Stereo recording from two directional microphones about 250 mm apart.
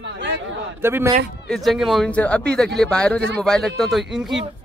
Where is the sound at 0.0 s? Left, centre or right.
Right.